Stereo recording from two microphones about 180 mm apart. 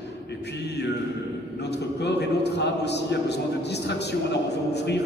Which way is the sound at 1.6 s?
70° left (ahead or behind).